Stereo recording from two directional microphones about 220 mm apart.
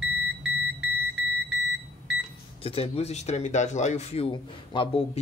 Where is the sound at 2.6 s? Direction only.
25° left (ahead or behind).